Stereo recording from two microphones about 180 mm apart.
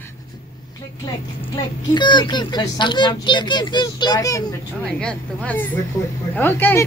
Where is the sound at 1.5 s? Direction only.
25° left (ahead or behind).